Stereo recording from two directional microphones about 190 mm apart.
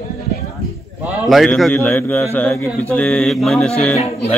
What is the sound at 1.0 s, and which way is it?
A man's voice, centre (ahead or behind).